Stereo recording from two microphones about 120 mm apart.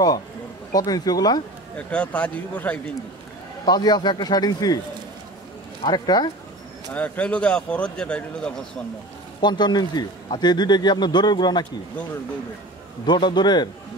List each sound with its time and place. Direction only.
0.7 s a man's voice: 30° left (ahead or behind)
1.8 s speech: 10° left (ahead or behind)
3.6 s a man's voice: 35° left (ahead or behind)
5.9 s a man's voice: 35° left (ahead or behind)
6.9 s speech: 10° left (ahead or behind)
9.4 s a man's voice: 35° left (ahead or behind)
13.0 s a man's voice: 40° left (ahead or behind)